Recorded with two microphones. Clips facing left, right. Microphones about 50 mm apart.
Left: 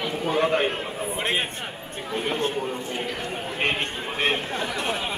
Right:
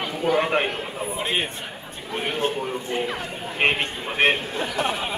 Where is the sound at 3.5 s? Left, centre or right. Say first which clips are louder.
Right 5 dB; right.